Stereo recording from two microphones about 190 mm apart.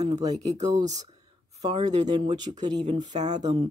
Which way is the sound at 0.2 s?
20° right (ahead or behind).